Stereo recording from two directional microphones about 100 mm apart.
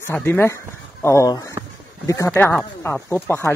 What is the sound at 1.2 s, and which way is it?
Speech, 40° left (ahead or behind).